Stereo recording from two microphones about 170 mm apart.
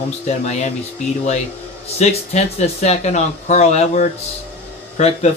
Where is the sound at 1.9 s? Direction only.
40° left (ahead or behind).